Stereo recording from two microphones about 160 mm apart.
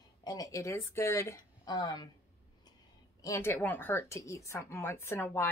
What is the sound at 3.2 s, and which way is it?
Speech, 15° left (ahead or behind).